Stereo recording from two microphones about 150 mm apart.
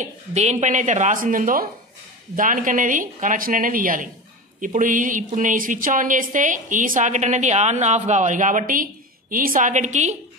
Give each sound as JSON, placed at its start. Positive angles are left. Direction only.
{"t": 0.0, "sound": "a woman's voice", "side_deg": -50}